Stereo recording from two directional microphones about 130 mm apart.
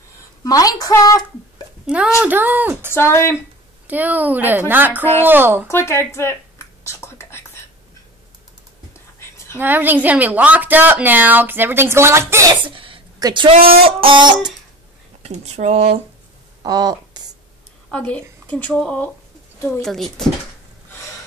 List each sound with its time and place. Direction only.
0.4 s a woman's voice: 25° left (ahead or behind)
2.2 s speech: 15° right (ahead or behind)
2.9 s a woman's voice: 20° left (ahead or behind)
3.8 s speech: 15° right (ahead or behind)
5.7 s a woman's voice: 20° left (ahead or behind)
6.8 s whispering: 20° left (ahead or behind)
8.9 s whispering: 20° left (ahead or behind)
9.6 s speech: 15° right (ahead or behind)
12.6 s a sound: 45° right (ahead or behind)
13.2 s speech: 40° right (ahead or behind)
15.2 s speech: 60° right (ahead or behind)
16.6 s speech: 30° right (ahead or behind)
17.9 s speech: 10° left (ahead or behind)